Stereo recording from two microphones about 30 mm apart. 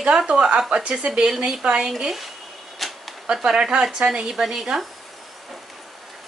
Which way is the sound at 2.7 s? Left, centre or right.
Centre.